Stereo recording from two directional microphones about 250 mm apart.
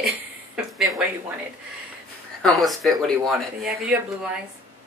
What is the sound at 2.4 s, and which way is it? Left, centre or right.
Speech, centre.